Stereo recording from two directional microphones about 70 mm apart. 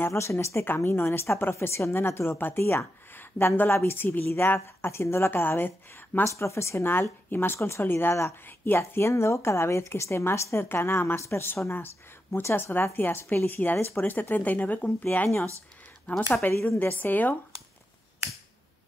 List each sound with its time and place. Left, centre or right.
0.0 s speech: left
6.2 s a woman's voice: left
16.1 s a woman's voice: left